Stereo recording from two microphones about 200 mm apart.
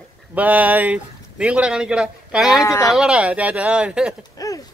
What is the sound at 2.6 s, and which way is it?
Speech, 15° left (ahead or behind).